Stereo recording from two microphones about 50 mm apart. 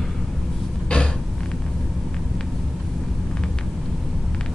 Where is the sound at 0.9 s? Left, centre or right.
Left.